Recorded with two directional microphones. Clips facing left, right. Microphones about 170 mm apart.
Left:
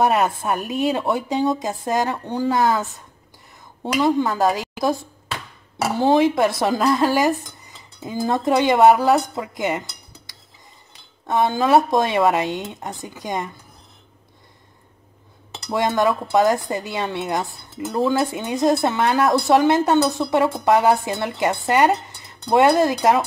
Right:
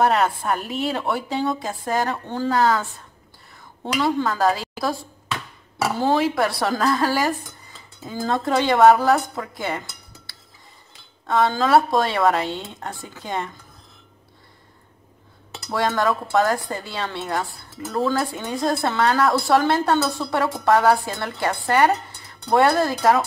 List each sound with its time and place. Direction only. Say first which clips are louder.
0.0 s speech: left 1 dB; 15° left (ahead or behind)
3.9 s speech: left 3 dB; 15° left (ahead or behind)
15.7 s speech: left 2 dB; 15° left (ahead or behind)